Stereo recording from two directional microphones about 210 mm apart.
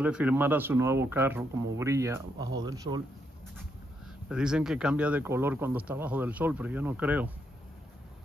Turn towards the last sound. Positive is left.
turn(degrees=-5)  # may be behind; listen again after turning